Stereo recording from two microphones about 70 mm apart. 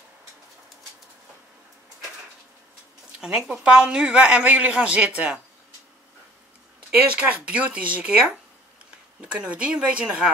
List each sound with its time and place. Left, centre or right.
3.2 s a woman's voice: centre
7.1 s a woman's voice: centre